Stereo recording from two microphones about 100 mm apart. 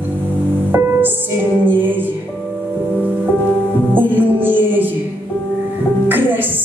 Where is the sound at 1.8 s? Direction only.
20° right (ahead or behind).